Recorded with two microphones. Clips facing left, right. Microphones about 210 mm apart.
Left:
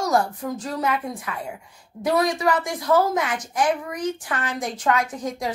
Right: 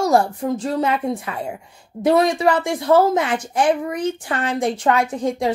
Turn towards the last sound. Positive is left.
turn(degrees=-30)  # may be behind; listen again after turning